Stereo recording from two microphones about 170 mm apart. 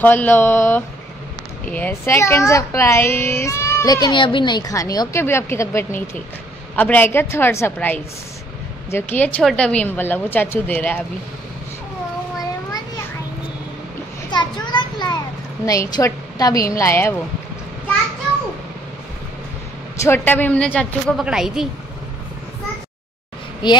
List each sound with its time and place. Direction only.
0.0 s a child's voice: 10° left (ahead or behind)
14.3 s a sound: 25° left (ahead or behind)
15.6 s a woman's voice: 20° left (ahead or behind)
20.0 s a child's voice: 15° left (ahead or behind); by 21.6 s 5° right (ahead or behind)
23.6 s a woman's voice: 25° left (ahead or behind)